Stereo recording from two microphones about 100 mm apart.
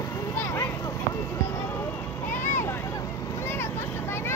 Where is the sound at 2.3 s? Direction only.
25° left (ahead or behind).